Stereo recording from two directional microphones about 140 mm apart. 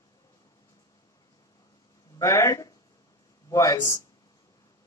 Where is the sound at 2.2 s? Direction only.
20° left (ahead or behind).